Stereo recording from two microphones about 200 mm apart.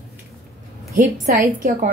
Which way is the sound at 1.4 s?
40° right (ahead or behind).